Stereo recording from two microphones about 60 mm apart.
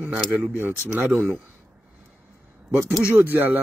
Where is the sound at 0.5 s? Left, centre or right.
Right.